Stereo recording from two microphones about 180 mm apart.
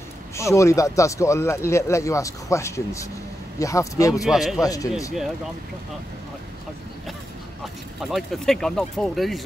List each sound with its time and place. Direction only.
0.4 s speech: 15° left (ahead or behind)
4.1 s speech: centre (ahead or behind)
8.0 s speech: centre (ahead or behind)